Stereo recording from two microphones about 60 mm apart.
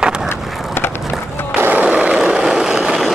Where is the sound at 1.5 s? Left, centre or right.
Right.